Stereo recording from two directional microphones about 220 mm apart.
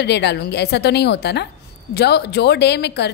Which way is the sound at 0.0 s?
50° left (ahead or behind).